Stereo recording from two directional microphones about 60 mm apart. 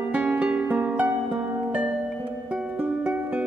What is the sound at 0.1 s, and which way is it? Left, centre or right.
Music, right.